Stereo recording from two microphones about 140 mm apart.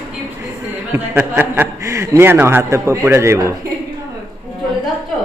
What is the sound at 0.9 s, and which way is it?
A man's voice, 15° right (ahead or behind).